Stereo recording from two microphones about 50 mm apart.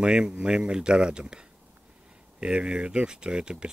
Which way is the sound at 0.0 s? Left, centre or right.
Right.